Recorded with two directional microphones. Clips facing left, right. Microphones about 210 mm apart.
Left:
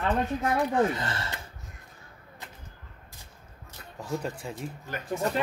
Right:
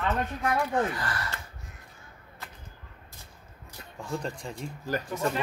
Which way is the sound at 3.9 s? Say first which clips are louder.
Left 1 dB; 5° left (ahead or behind).